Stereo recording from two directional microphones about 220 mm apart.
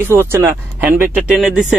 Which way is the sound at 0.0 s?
10° right (ahead or behind).